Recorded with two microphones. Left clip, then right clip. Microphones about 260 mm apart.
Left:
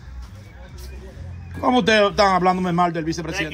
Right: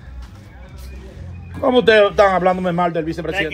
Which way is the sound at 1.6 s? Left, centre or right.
Left.